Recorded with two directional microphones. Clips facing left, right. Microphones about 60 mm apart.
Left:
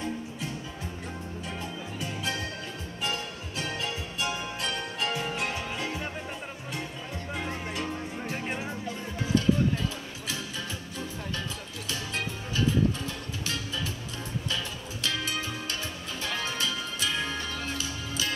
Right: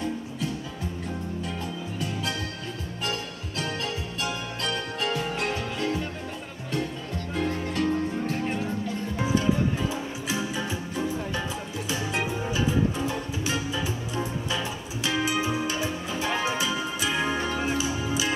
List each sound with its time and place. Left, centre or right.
3.0 s music: left
7.3 s music: centre
9.2 s music: centre